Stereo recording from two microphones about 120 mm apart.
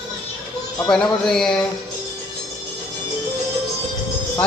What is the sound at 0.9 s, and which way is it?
Speech, 5° left (ahead or behind).